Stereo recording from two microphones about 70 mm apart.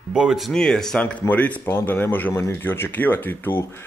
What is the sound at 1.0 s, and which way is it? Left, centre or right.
Speech, left.